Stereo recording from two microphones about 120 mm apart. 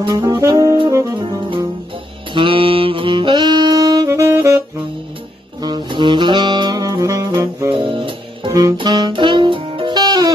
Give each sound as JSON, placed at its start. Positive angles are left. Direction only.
{"t": 0.0, "sound": "saxophone", "side_deg": -35}
{"t": 2.3, "sound": "saxophone", "side_deg": -45}
{"t": 5.6, "sound": "saxophone", "side_deg": -35}
{"t": 7.7, "sound": "music", "side_deg": -45}
{"t": 8.5, "sound": "saxophone", "side_deg": -30}
{"t": 8.7, "sound": "music", "side_deg": -40}